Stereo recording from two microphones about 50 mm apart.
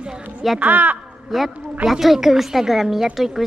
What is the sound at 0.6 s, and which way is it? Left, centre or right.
Speech, right.